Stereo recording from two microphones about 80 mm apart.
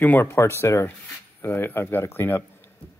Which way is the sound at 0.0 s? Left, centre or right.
Left.